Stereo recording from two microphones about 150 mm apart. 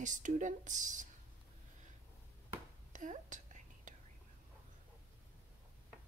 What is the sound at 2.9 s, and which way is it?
Whispering, 55° right (ahead or behind).